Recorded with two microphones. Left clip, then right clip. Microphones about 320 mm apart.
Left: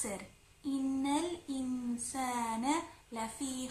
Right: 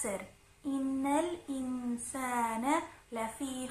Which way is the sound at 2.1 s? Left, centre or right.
Centre.